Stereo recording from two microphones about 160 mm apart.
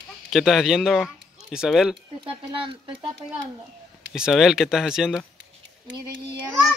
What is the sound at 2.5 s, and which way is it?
Speech, 35° right (ahead or behind).